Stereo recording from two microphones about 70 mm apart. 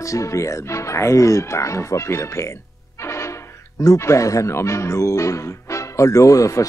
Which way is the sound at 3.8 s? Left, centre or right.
Left.